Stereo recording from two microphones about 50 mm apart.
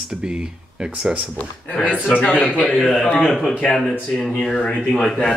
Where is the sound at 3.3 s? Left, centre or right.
Centre.